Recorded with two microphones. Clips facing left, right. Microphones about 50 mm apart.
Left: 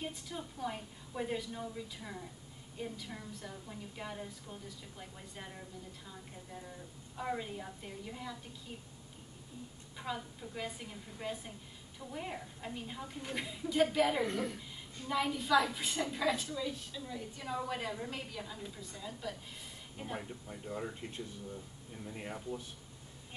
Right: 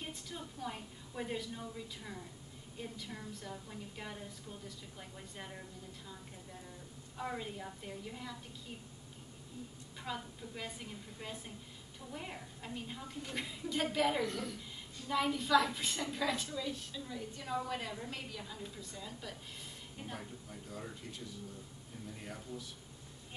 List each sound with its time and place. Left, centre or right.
0.1 s a woman's voice: centre
7.2 s a woman's voice: centre
10.0 s a woman's voice: centre
14.2 s a woman's voice: left
15.0 s a woman's voice: centre
20.2 s speech: left